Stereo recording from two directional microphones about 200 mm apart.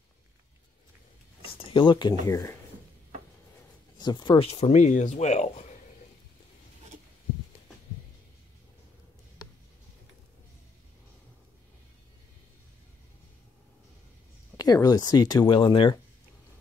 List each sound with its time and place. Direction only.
1.6 s speech: 25° left (ahead or behind)
4.0 s speech: 20° left (ahead or behind)
14.6 s speech: 20° left (ahead or behind)